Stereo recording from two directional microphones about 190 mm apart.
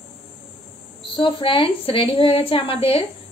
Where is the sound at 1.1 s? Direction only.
25° left (ahead or behind).